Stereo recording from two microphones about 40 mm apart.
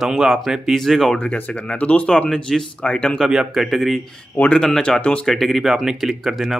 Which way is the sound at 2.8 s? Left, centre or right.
Left.